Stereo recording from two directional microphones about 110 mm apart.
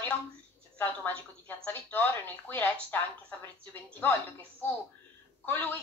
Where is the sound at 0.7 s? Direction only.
15° left (ahead or behind).